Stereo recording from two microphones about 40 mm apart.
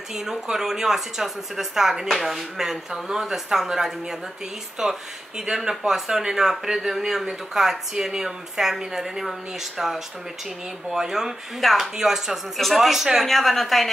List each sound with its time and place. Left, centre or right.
0.1 s a man's voice: centre
13.2 s a woman's voice: centre